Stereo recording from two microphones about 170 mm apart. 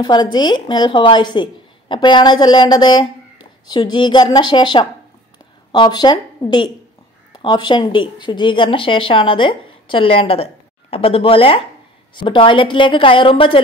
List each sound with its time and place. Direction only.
0.0 s speech: 25° left (ahead or behind)